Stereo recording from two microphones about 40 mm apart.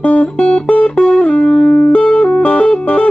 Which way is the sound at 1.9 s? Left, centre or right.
Left.